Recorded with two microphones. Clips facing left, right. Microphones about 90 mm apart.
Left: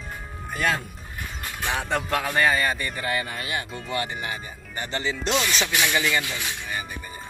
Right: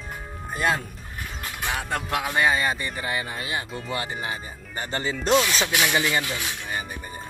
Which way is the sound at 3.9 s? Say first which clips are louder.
Left 1 dB; 30° right (ahead or behind).